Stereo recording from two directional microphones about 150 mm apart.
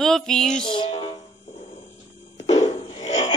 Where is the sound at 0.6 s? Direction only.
30° left (ahead or behind).